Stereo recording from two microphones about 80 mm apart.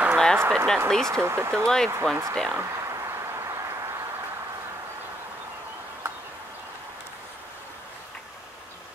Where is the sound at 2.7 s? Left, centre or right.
Right.